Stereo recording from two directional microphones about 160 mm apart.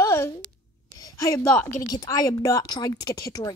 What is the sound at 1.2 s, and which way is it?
A woman's voice, 20° left (ahead or behind).